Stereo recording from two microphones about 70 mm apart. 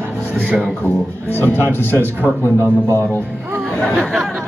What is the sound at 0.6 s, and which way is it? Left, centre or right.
Speech, left.